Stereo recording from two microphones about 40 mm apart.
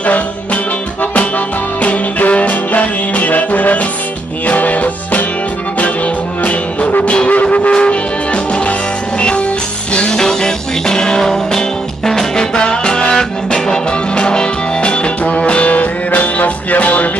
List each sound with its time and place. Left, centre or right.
1.8 s music: left
7.2 s music: left
9.9 s music: left